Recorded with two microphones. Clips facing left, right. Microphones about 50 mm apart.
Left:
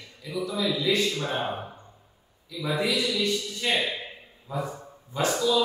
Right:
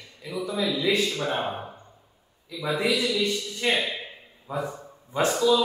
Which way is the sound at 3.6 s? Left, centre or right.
Right.